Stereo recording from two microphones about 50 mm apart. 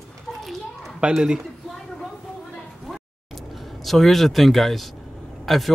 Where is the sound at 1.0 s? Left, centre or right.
Centre.